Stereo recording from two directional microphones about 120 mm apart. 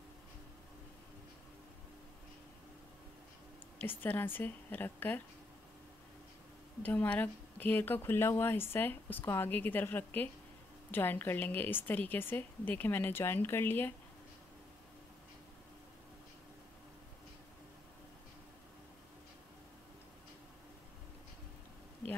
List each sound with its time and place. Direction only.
3.8 s speech: 15° left (ahead or behind)
6.8 s speech: 15° left (ahead or behind)